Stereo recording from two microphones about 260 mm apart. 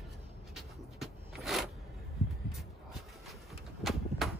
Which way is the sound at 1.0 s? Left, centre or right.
Centre.